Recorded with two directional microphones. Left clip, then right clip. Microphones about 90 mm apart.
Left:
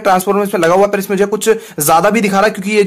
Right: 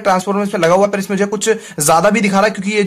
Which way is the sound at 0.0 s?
35° left (ahead or behind).